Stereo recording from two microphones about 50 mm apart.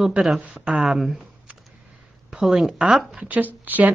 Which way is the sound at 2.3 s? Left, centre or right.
Centre.